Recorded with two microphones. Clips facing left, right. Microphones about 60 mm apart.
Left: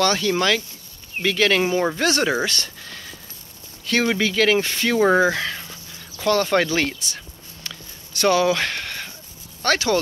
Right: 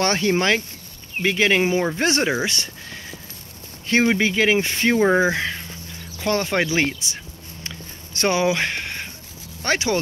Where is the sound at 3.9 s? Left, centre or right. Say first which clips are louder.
Right 2 dB; right.